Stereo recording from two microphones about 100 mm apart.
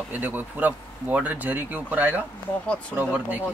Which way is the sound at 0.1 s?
15° right (ahead or behind).